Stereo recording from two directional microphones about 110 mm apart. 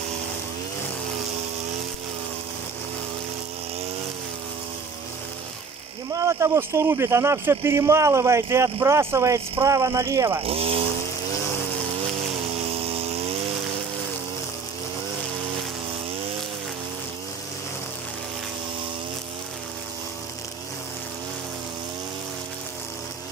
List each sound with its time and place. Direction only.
6.1 s speech: 30° right (ahead or behind)
10.4 s speech: 60° right (ahead or behind)
12.6 s vehicle: 65° right (ahead or behind)